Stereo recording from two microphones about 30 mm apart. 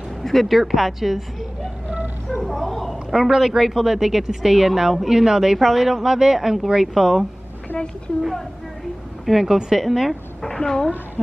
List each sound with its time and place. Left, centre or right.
0.2 s speech: centre
2.4 s speech: centre
3.1 s speech: centre
5.6 s speech: centre
6.0 s speech: centre
7.0 s speech: centre
9.2 s speech: centre
10.5 s speech: centre